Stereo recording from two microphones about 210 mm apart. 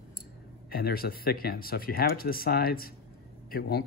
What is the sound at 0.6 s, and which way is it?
Speech, 45° left (ahead or behind).